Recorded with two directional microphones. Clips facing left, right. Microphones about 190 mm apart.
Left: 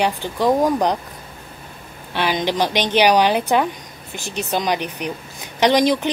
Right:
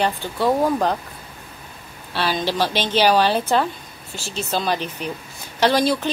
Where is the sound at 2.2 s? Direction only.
15° left (ahead or behind).